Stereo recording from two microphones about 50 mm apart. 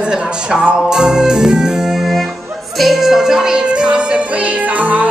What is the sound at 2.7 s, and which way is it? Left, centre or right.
Music, centre.